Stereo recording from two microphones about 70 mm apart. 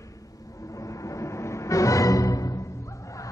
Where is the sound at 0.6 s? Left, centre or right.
Left.